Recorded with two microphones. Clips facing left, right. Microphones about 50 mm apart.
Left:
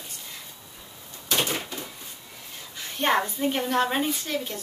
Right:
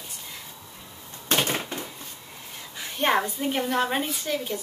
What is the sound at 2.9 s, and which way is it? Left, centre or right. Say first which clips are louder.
A woman's voice: even; centre.